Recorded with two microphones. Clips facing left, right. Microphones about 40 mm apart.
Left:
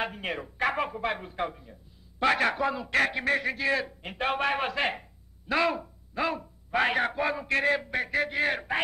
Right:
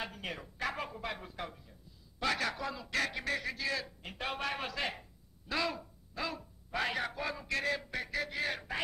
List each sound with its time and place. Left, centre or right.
0.0 s speech: left